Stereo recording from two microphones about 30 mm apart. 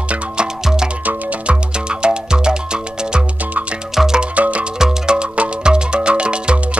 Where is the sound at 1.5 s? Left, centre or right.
Right.